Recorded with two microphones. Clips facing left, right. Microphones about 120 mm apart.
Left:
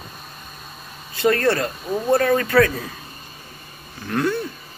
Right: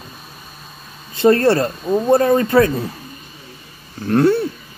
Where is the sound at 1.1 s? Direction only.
30° right (ahead or behind).